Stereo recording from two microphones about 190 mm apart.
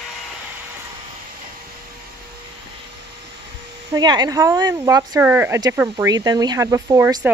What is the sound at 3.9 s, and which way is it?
Speech, 20° right (ahead or behind).